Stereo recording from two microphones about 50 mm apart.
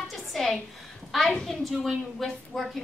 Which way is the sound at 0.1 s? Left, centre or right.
Centre.